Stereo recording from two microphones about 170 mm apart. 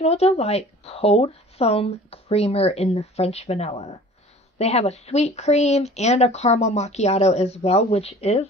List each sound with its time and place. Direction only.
0.0 s speech: 35° left (ahead or behind)